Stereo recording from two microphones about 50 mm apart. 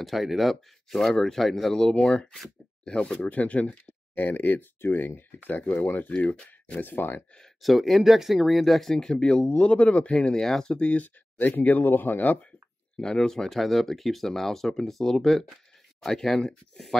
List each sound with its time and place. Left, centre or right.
0.0 s speech: centre; by 3.7 s left
4.1 s speech: left
5.5 s speech: left
6.1 s speech: left
6.8 s speech: left
7.6 s speech: centre
8.9 s speech: centre
9.5 s speech: left
11.3 s speech: left
13.0 s speech: centre